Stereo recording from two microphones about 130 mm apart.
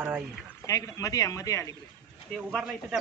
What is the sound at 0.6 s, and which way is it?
Speech, 25° left (ahead or behind).